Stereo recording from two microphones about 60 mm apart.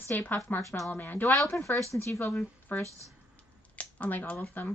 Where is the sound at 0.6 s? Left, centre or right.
Left.